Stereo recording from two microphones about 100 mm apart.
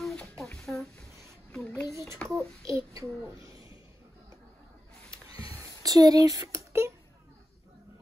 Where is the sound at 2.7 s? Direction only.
30° right (ahead or behind).